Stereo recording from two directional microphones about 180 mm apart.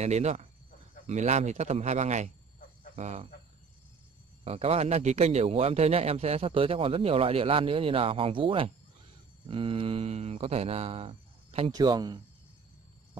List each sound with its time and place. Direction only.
0.0 s a man's voice: 40° right (ahead or behind)
4.5 s a man's voice: 35° right (ahead or behind)
11.7 s speech: 20° right (ahead or behind)